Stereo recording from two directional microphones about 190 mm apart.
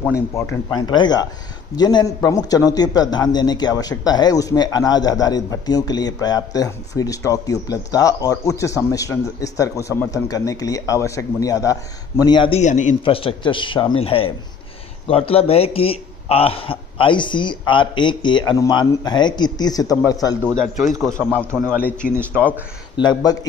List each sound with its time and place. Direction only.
0.3 s a man's voice: 15° left (ahead or behind); by 12.9 s 40° left (ahead or behind)
13.0 s a man's voice: 30° left (ahead or behind)
21.1 s a man's voice: 10° right (ahead or behind)
22.9 s a man's voice: 25° left (ahead or behind)